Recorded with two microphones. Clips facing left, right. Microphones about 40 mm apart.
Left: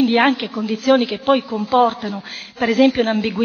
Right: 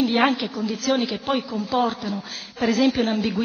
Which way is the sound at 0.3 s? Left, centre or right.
Left.